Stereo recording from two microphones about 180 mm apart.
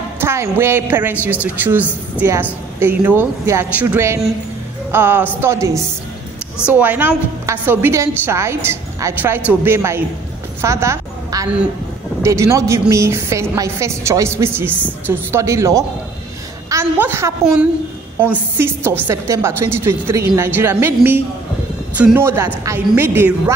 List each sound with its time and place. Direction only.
0.2 s a woman's voice: 15° right (ahead or behind)